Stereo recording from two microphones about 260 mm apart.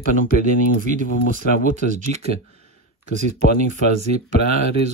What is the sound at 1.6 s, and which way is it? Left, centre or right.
Speech, right.